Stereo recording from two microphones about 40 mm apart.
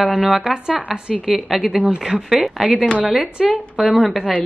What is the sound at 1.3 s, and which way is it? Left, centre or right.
Speech, centre.